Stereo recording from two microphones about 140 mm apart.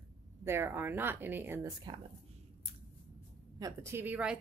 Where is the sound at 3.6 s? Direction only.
20° right (ahead or behind).